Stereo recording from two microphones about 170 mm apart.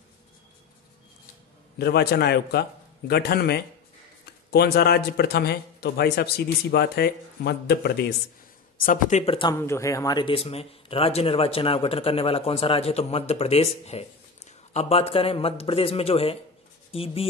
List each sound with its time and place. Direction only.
1.8 s a man's voice: 70° left (ahead or behind)
8.7 s speech: 55° left (ahead or behind)
9.2 s speech: 35° left (ahead or behind)
9.5 s speech: 15° left (ahead or behind); by 17.3 s 35° left (ahead or behind)